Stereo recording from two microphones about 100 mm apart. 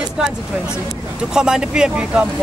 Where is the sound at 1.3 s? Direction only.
5° right (ahead or behind).